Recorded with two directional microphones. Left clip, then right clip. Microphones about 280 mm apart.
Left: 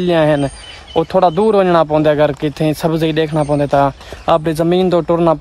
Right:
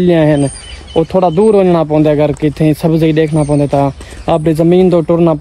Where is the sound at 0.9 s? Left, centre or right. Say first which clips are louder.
Right 2 dB; left.